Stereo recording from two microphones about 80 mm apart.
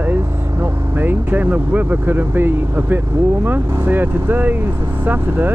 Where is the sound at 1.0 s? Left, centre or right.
Right.